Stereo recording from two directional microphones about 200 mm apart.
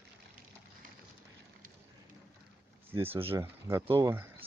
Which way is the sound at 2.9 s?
10° right (ahead or behind).